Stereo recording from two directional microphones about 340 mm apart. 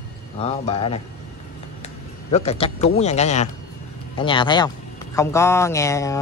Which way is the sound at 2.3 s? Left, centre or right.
Centre.